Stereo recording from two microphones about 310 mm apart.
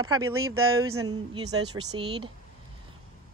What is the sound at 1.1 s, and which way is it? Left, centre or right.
Speech, centre.